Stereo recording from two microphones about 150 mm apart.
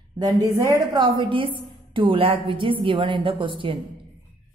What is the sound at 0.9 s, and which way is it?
A woman's voice, 35° right (ahead or behind).